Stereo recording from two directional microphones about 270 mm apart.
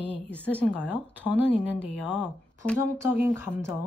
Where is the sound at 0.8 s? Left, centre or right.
Centre.